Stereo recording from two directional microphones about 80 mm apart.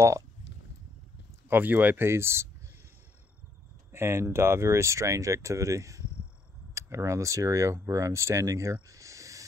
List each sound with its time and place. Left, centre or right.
1.5 s speech: right
3.9 s speech: right